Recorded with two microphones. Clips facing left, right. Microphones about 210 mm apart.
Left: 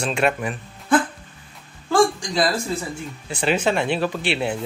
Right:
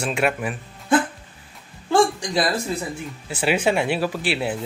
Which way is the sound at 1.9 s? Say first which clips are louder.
Even; 20° right (ahead or behind).